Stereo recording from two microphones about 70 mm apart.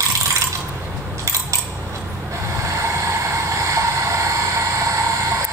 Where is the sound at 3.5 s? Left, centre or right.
Right.